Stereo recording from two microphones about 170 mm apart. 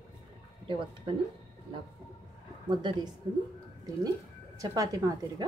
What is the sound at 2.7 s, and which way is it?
Dishes, 25° right (ahead or behind).